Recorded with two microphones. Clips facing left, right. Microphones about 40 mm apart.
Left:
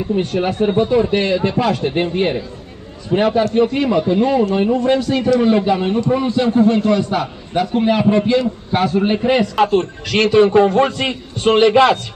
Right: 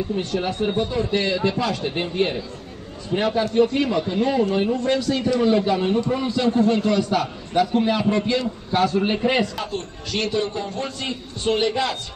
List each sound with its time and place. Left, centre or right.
0.1 s a man's voice: left
9.6 s a man's voice: left